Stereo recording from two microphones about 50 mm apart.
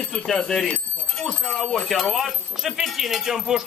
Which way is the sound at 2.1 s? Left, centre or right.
Centre.